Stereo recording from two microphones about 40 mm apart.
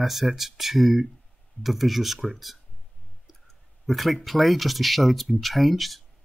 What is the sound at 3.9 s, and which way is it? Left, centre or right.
Speech, centre.